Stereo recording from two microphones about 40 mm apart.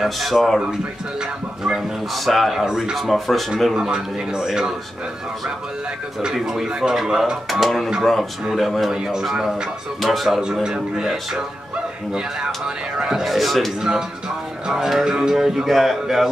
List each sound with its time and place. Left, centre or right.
0.0 s speech: centre
2.2 s speech: centre
3.3 s speech: centre
3.9 s speech: centre
6.3 s speech: centre
10.4 s speech: centre
13.2 s speech: centre
14.7 s speech: centre
15.0 s music: centre
15.3 s speech: centre